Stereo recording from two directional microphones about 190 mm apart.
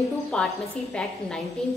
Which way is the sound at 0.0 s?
Centre (ahead or behind).